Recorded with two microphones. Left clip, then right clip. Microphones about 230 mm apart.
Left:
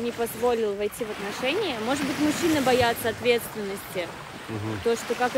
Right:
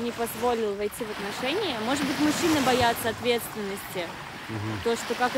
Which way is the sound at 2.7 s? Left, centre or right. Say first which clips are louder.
Left 1 dB; centre.